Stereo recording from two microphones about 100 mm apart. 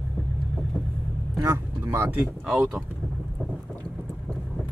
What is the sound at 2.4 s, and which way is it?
Speech, 5° right (ahead or behind).